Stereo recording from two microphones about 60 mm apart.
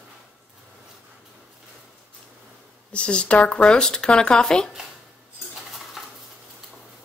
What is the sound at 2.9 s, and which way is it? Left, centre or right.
Speech, centre.